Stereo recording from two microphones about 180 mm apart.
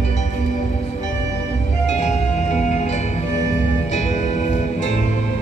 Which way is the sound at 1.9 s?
40° left (ahead or behind).